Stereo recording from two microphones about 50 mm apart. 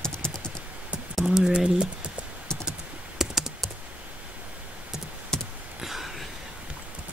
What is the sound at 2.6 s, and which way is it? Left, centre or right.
Computer keyboard, centre.